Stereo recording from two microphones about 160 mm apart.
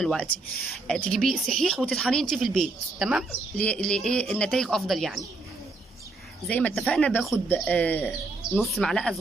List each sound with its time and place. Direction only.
0.0 s speech: 5° left (ahead or behind)
3.3 s speech: 10° left (ahead or behind)
6.4 s speech: 5° left (ahead or behind)